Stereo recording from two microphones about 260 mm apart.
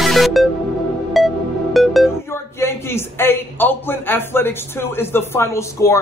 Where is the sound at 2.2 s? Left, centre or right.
Centre.